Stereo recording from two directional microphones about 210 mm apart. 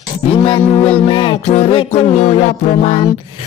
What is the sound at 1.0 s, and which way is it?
Speech, 25° left (ahead or behind).